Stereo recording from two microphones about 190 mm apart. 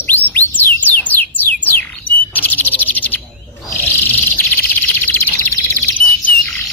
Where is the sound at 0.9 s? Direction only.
10° left (ahead or behind).